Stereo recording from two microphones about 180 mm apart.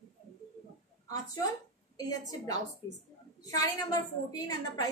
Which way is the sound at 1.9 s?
20° left (ahead or behind).